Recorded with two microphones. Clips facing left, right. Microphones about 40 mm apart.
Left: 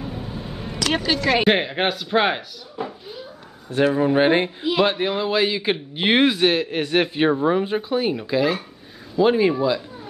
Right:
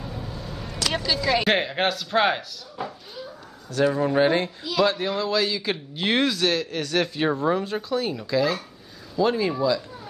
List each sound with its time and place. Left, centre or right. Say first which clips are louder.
0.0 s vehicle: left 4 dB; centre
1.3 s speech: left 3 dB; centre
3.7 s speech: left 3 dB; left